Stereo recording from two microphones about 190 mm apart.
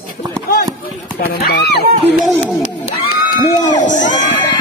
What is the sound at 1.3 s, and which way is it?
Speech, 55° left (ahead or behind).